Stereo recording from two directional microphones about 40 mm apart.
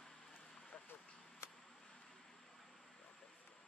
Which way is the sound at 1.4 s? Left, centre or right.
Left.